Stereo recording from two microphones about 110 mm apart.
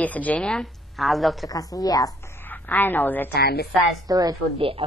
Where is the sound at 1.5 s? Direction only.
35° left (ahead or behind).